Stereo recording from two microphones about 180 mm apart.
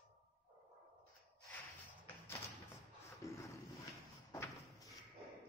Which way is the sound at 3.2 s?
15° left (ahead or behind).